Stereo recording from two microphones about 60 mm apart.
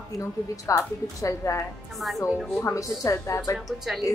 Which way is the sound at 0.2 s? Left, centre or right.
Left.